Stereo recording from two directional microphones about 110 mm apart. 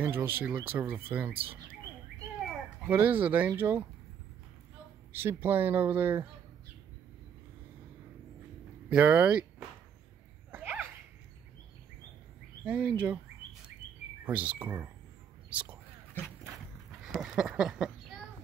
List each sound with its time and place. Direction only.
0.0 s speech: 20° right (ahead or behind)
2.9 s speech: 15° right (ahead or behind)
5.1 s speech: 20° right (ahead or behind)
8.8 s speech: 10° right (ahead or behind)
10.5 s a sound: 15° right (ahead or behind)
12.6 s speech: 10° right (ahead or behind)
14.2 s speech: 15° right (ahead or behind)
15.5 s whispering: 15° right (ahead or behind)
16.5 s a sound: 5° right (ahead or behind)